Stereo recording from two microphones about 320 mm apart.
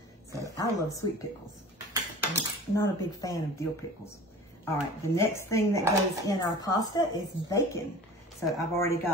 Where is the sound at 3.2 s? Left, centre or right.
Centre.